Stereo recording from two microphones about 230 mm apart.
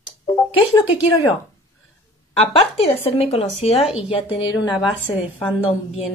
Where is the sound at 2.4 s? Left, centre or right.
Left.